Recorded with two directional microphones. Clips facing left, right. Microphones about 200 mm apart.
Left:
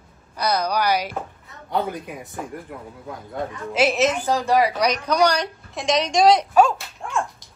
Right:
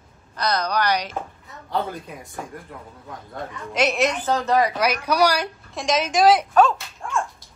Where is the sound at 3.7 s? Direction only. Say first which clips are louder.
Left 2 dB; 5° left (ahead or behind).